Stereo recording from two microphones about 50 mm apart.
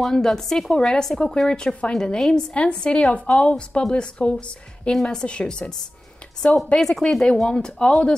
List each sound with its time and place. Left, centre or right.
0.0 s a woman's voice: centre
4.9 s a woman's voice: centre
6.8 s a woman's voice: centre